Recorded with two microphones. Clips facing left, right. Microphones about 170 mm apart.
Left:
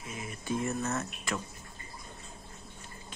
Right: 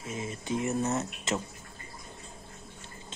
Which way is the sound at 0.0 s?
25° right (ahead or behind).